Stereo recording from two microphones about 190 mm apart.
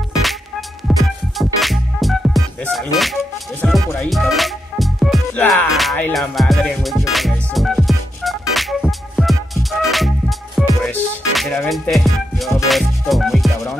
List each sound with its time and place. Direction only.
0.8 s music: centre (ahead or behind)